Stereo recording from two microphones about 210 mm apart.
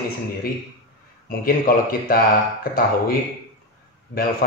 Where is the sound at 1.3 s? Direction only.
45° left (ahead or behind).